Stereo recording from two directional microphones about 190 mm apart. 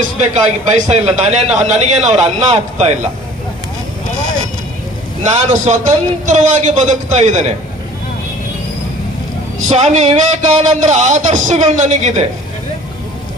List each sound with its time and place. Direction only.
0.2 s a man's voice: 40° right (ahead or behind)
5.2 s a man's voice: 40° right (ahead or behind)
9.7 s a man's voice: 35° right (ahead or behind)